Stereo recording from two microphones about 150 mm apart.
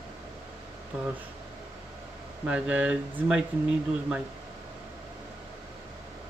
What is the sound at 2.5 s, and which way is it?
Speech, 10° right (ahead or behind).